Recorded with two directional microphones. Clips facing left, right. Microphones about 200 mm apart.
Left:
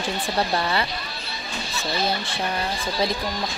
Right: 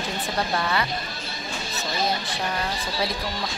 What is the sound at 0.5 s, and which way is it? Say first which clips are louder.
Speech: left 1 dB; 30° left (ahead or behind).